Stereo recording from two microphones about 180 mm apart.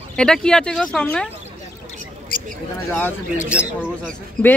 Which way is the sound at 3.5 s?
5° right (ahead or behind).